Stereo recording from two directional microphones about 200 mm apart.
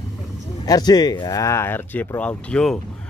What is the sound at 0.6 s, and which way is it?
Speech, 20° left (ahead or behind).